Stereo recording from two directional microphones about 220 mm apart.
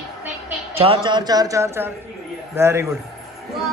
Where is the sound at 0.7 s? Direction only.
25° right (ahead or behind).